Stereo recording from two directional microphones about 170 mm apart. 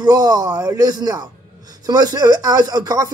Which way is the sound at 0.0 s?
20° right (ahead or behind).